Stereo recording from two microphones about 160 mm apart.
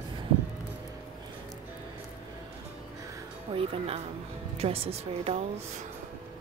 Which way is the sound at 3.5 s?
40° right (ahead or behind).